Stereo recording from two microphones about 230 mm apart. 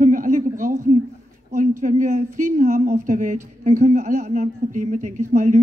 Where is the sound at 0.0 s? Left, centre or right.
Right.